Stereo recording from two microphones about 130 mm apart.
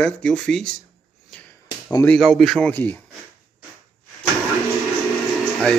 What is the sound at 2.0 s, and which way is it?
Speech, 5° left (ahead or behind).